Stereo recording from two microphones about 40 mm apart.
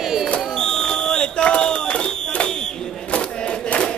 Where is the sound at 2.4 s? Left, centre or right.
Centre.